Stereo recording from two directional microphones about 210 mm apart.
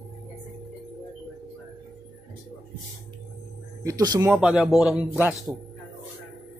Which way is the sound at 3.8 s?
15° right (ahead or behind).